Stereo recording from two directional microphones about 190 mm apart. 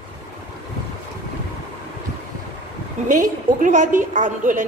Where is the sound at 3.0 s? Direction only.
45° right (ahead or behind).